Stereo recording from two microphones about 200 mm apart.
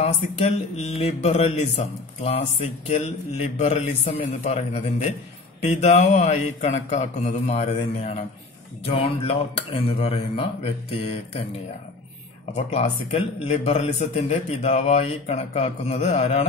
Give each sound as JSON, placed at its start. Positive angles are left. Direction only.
{"t": 0.0, "sound": "a man's voice", "side_deg": 35}
{"t": 12.5, "sound": "a man's voice", "side_deg": 35}